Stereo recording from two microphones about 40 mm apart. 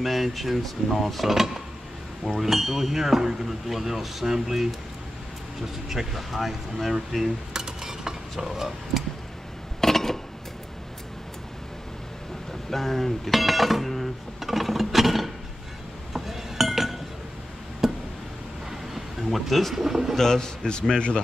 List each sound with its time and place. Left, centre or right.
0.0 s speech: centre
5.9 s speech: centre
7.5 s stir: centre
8.5 s speech: centre
9.8 s a sound: centre
12.6 s speech: centre
16.1 s chink: centre
17.8 s tick: centre
18.7 s a sound: centre
19.7 s speech: centre
20.2 s a man's voice: centre